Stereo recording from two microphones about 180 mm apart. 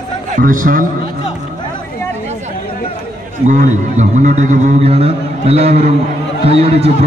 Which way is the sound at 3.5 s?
40° right (ahead or behind).